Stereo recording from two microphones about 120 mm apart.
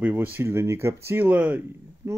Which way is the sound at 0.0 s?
15° right (ahead or behind).